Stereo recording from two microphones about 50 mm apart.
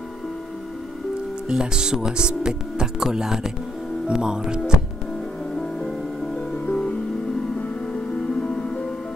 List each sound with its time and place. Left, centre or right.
1.5 s speech: centre
5.6 s music: centre
8.4 s music: centre